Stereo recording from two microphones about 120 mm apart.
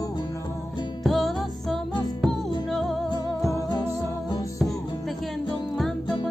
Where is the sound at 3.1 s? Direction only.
30° left (ahead or behind).